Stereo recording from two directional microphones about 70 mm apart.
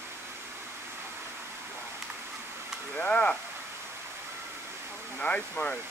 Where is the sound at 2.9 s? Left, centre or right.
Centre.